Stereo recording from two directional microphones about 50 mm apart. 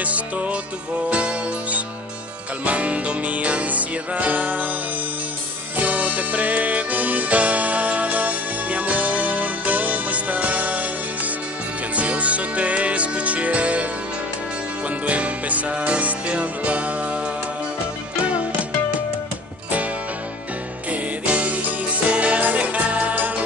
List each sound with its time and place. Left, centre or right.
0.0 s music: right
5.8 s music: right
15.0 s music: right
18.2 s music: right
20.9 s music: right